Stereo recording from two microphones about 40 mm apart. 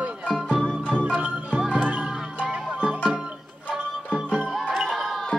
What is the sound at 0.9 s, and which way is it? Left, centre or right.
Music, right.